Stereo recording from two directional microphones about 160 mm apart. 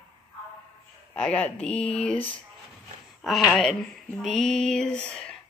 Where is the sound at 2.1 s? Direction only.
35° left (ahead or behind).